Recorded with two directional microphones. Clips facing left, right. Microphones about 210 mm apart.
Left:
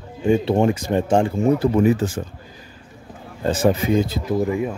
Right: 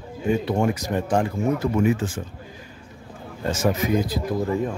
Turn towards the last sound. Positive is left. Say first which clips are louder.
# left 3 dB
turn(degrees=25)  # may be behind; listen again after turning